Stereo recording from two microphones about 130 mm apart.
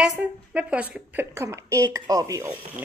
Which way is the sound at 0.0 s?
10° right (ahead or behind).